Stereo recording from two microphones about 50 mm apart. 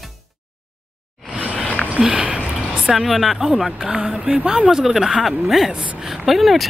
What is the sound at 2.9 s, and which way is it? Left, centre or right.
Speech, centre.